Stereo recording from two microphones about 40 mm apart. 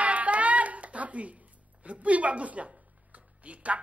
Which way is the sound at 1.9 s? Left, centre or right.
Right.